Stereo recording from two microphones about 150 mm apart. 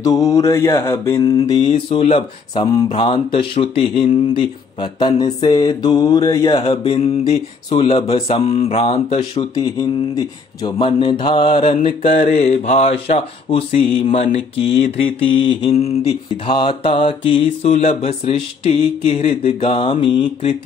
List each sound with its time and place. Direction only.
0.0 s mantra: 20° left (ahead or behind)
1.6 s speech: 45° left (ahead or behind)
2.5 s mantra: 25° left (ahead or behind)
12.1 s mantra: 60° left (ahead or behind)
12.7 s mantra: 40° left (ahead or behind)
15.7 s mantra: 45° left (ahead or behind)